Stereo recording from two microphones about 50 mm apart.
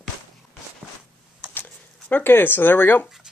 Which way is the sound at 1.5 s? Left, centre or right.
Left.